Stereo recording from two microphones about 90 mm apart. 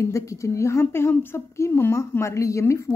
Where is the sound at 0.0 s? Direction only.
35° left (ahead or behind).